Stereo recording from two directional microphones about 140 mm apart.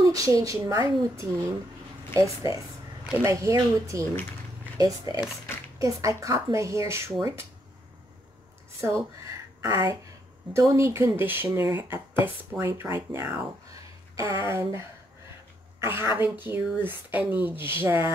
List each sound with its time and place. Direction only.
0.0 s speech: 25° right (ahead or behind)
2.1 s speech: 25° right (ahead or behind)
4.0 s speech: 10° left (ahead or behind)
4.7 s speech: 25° right (ahead or behind)
8.8 s speech: 20° right (ahead or behind)
14.4 s speech: 20° right (ahead or behind)
15.8 s speech: 20° right (ahead or behind)